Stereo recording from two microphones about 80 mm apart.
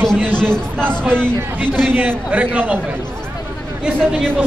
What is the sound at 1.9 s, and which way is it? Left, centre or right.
Speech, centre.